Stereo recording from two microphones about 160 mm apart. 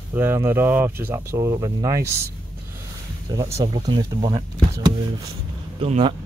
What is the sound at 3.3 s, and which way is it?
Speech, 20° right (ahead or behind).